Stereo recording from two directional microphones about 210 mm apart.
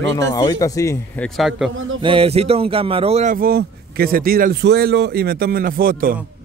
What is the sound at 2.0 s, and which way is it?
Speech, 25° right (ahead or behind).